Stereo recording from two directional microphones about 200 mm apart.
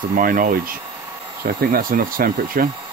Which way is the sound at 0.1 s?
45° right (ahead or behind).